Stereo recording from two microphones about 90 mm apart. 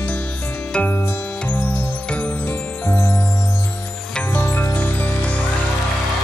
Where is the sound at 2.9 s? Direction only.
25° left (ahead or behind).